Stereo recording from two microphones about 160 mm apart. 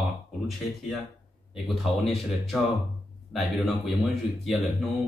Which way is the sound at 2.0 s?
Centre (ahead or behind).